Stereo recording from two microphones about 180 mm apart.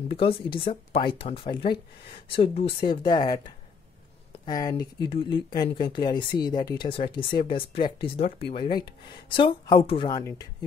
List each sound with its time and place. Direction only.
0.1 s speech: 30° left (ahead or behind)